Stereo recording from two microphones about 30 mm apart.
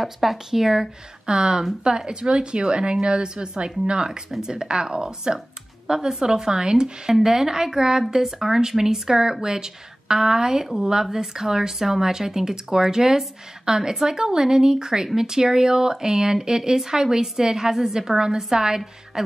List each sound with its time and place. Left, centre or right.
0.0 s speech: centre
0.5 s speech: centre
1.2 s a woman's voice: right
7.2 s speech: centre
19.1 s beatboxing: centre